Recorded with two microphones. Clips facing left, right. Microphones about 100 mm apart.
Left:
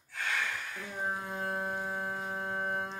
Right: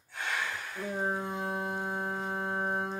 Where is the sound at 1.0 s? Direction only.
25° right (ahead or behind).